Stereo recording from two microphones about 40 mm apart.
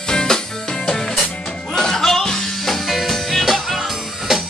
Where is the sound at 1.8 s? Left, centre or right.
Centre.